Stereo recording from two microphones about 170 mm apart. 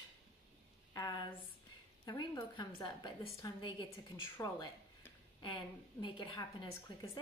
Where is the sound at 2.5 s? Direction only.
25° left (ahead or behind).